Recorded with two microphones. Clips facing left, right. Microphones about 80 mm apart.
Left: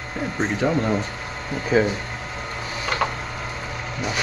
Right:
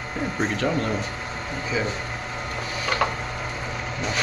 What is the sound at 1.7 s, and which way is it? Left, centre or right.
Speech, left.